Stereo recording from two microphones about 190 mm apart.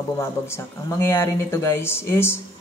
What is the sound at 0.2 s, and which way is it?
Speech, 15° left (ahead or behind).